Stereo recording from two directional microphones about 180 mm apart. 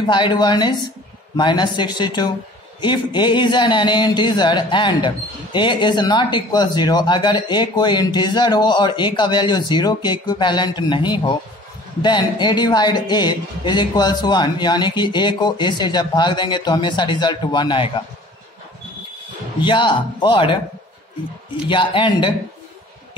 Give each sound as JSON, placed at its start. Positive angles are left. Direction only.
{"t": 0.0, "sound": "speech", "side_deg": 25}
{"t": 19.6, "sound": "speech", "side_deg": 25}
{"t": 21.6, "sound": "speech", "side_deg": 25}